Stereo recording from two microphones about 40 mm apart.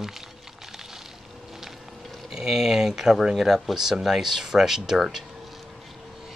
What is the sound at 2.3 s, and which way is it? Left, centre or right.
Speech, centre.